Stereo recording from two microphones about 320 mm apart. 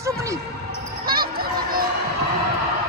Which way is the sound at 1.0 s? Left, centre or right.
Right.